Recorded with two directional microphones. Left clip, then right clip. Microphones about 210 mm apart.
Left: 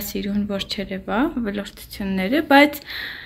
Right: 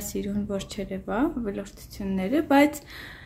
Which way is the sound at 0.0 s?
10° right (ahead or behind).